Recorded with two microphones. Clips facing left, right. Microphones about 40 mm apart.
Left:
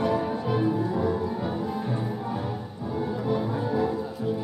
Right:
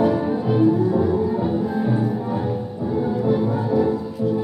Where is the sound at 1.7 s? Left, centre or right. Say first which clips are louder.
Right 8 dB; centre.